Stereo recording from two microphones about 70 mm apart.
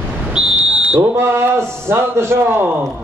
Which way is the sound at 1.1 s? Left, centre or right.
Right.